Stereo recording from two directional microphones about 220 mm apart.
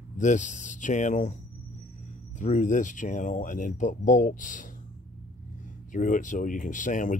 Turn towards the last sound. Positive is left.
turn(degrees=35)  # may be behind; listen again after turning